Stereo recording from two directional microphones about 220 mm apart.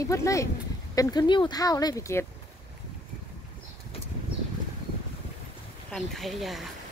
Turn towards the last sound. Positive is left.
turn(degrees=0)  # may be behind; listen again after turning